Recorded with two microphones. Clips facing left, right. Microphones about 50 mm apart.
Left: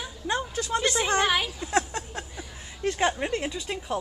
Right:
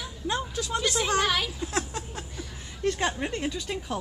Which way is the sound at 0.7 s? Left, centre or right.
Centre.